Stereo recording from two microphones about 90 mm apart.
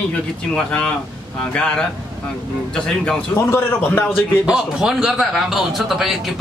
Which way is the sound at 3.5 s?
25° left (ahead or behind).